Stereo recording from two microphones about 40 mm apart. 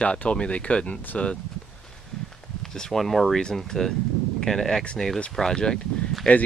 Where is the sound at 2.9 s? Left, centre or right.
Centre.